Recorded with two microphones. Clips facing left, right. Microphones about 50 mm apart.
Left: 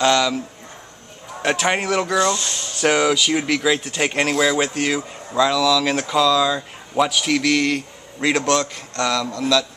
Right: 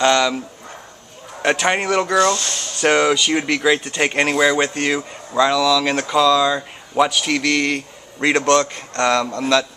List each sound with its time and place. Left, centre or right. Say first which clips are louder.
0.0 s speech: right 2 dB; centre
1.4 s speech: right 2 dB; centre
8.9 s speech: right 4 dB; right